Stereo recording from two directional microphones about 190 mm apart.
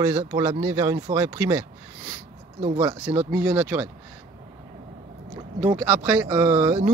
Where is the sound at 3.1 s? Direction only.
30° right (ahead or behind).